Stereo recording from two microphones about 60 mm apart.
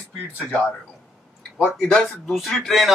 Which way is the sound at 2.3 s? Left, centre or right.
Centre.